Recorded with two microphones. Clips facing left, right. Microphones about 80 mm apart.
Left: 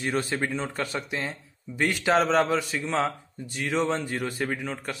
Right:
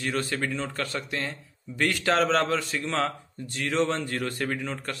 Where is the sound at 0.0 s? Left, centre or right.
Left.